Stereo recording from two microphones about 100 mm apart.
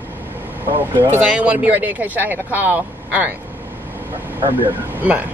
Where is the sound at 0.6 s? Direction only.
55° right (ahead or behind).